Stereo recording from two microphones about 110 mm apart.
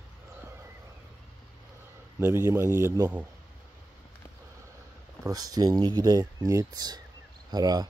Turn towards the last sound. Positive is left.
turn(degrees=-35)  # may be behind; listen again after turning